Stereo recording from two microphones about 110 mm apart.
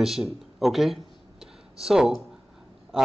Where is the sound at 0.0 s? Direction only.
5° right (ahead or behind).